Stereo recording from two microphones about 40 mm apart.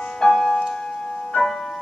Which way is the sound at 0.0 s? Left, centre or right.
Centre.